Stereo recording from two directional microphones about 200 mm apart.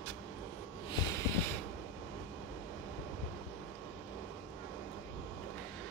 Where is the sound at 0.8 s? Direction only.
20° left (ahead or behind).